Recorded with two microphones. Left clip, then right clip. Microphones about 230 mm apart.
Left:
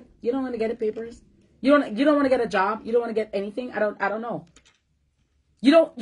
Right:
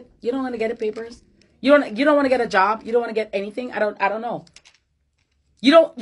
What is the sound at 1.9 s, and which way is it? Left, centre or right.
Speech, centre.